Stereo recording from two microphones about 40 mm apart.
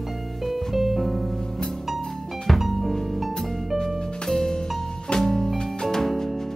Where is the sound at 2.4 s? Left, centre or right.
Centre.